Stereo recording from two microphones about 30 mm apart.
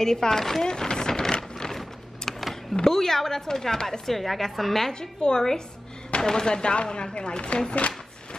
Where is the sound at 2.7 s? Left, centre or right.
Centre.